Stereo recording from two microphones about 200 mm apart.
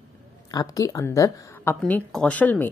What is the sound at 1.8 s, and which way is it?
Speech, centre (ahead or behind).